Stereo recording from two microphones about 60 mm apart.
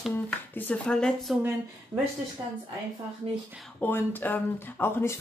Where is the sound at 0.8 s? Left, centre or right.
Centre.